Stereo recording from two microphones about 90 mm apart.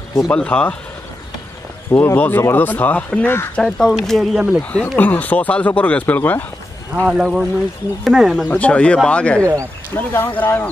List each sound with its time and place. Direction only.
0.3 s speech: 15° left (ahead or behind)
1.9 s speech: 20° left (ahead or behind); by 4.5 s centre (ahead or behind)
4.6 s speech: 10° left (ahead or behind)
7.1 s speech: 10° right (ahead or behind)
8.5 s speech: 15° left (ahead or behind)
9.4 s speech: 35° right (ahead or behind)
9.9 s speech: 30° left (ahead or behind)